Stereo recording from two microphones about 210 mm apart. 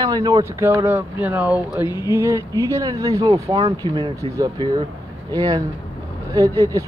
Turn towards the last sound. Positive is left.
turn(degrees=-15)  # may be behind; listen again after turning